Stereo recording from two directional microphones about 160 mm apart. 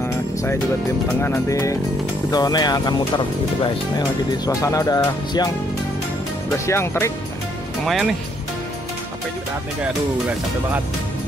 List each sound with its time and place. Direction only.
0.0 s music: 15° left (ahead or behind)
4.5 s music: 20° left (ahead or behind)
6.6 s speech: 15° left (ahead or behind)
7.8 s speech: centre (ahead or behind)
9.8 s speech: 10° right (ahead or behind)